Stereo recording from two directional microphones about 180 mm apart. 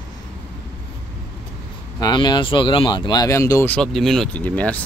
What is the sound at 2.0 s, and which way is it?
Speech, 25° left (ahead or behind).